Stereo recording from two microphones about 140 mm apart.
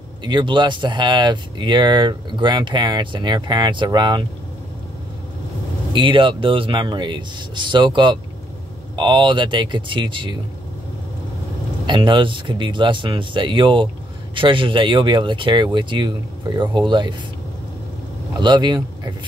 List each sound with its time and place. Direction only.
0.2 s speech: 35° right (ahead or behind)
5.9 s speech: 35° right (ahead or behind)
11.8 s speech: 35° right (ahead or behind)
18.4 s speech: 35° right (ahead or behind)